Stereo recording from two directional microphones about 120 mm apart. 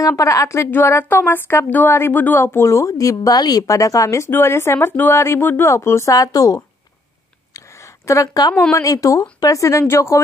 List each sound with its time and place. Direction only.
0.0 s a woman's voice: 25° left (ahead or behind)
7.5 s a sound: 25° left (ahead or behind)
8.7 s a woman's voice: 30° left (ahead or behind)